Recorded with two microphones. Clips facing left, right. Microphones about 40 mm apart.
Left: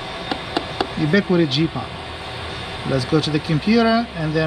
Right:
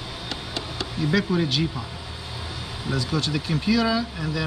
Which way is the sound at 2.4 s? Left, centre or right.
Left.